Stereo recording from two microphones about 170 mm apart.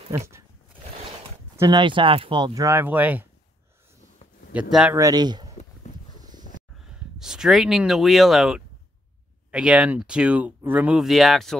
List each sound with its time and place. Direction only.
0.1 s speech: 15° right (ahead or behind)
1.6 s speech: 25° right (ahead or behind); by 3.3 s 10° right (ahead or behind)
4.5 s speech: 5° right (ahead or behind)
4.9 s speech: 20° right (ahead or behind)
7.2 s speech: 5° right (ahead or behind)